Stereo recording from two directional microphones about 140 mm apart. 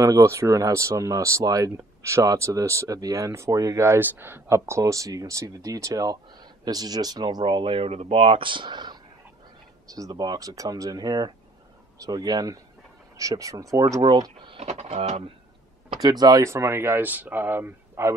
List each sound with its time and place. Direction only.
0.0 s speech: 20° right (ahead or behind); by 15.3 s 45° right (ahead or behind)
15.9 s speech: 30° right (ahead or behind)